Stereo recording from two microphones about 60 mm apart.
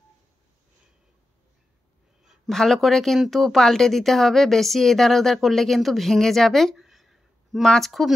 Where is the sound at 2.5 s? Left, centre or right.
Centre.